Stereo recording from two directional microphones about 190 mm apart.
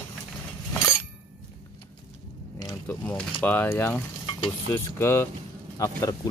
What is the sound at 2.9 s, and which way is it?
Speech, 5° left (ahead or behind).